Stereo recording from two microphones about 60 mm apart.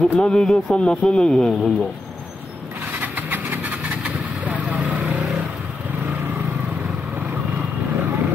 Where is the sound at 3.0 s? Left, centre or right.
Right.